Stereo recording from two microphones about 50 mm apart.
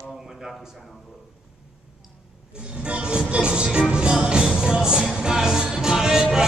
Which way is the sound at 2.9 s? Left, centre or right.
Right.